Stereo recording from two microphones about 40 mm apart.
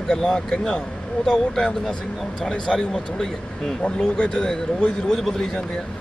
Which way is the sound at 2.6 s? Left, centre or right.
Left.